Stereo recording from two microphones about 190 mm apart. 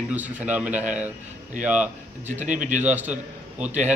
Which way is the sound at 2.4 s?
40° right (ahead or behind).